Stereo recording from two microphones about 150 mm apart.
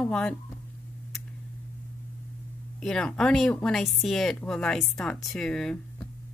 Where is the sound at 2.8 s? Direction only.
5° left (ahead or behind).